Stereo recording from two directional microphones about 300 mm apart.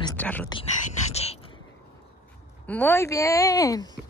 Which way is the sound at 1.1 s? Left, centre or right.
Left.